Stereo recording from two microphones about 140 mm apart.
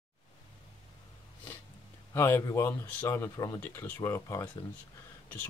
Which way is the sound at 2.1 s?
20° left (ahead or behind).